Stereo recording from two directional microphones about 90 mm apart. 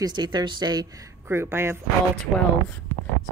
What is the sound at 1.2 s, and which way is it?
Speech, 30° right (ahead or behind).